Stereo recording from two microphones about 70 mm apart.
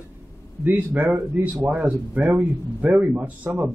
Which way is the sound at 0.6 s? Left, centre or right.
Right.